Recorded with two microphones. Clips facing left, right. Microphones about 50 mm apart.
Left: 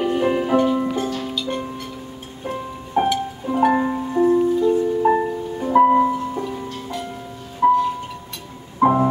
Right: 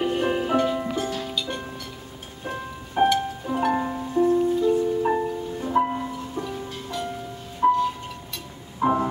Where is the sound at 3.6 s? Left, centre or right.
Centre.